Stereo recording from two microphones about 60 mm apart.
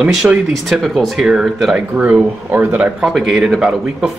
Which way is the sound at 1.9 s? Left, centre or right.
Right.